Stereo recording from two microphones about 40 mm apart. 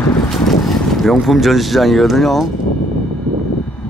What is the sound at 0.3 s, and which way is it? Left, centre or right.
Boat, centre.